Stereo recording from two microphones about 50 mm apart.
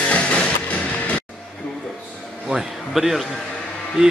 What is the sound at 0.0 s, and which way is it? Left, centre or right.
Music, left.